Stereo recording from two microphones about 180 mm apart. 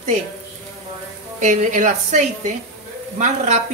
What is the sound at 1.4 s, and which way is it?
Speech, 40° right (ahead or behind).